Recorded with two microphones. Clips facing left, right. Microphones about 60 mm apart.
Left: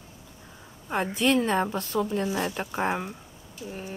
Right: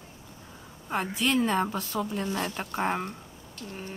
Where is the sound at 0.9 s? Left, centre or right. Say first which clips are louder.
Left 3 dB; centre.